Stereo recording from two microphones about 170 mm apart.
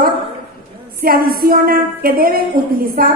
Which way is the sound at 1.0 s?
60° right (ahead or behind).